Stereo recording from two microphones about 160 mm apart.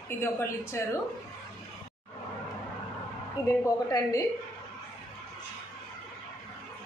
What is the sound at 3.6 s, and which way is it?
Speech, 20° left (ahead or behind).